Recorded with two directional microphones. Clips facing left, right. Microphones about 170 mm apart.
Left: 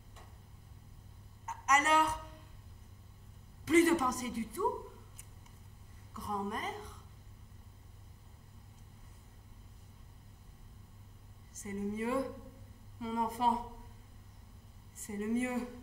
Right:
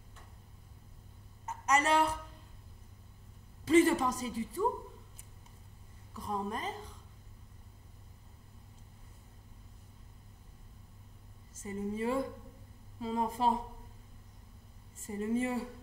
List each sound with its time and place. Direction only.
1.4 s a sound: 30° right (ahead or behind)
3.6 s a woman's voice: 30° right (ahead or behind)
6.1 s a woman's voice: 30° right (ahead or behind)
11.5 s a woman's voice: 30° right (ahead or behind)
15.0 s a woman's voice: 30° right (ahead or behind)